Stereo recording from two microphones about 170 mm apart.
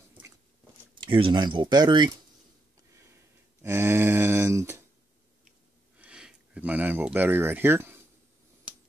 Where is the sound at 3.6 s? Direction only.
15° right (ahead or behind).